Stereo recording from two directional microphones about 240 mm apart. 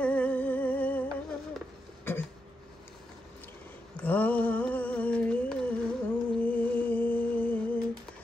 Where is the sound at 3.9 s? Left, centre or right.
Centre.